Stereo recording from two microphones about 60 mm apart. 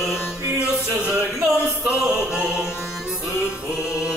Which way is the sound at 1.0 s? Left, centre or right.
Centre.